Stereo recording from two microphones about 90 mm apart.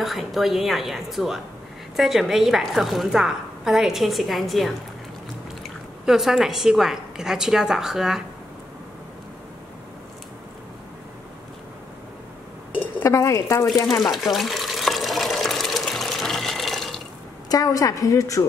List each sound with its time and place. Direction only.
0.0 s a woman's voice: centre (ahead or behind)
13.0 s a woman's voice: 35° left (ahead or behind)
14.0 s water: centre (ahead or behind)
17.5 s a woman's voice: 40° left (ahead or behind)